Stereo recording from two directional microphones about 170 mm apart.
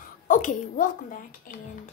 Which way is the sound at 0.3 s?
50° left (ahead or behind).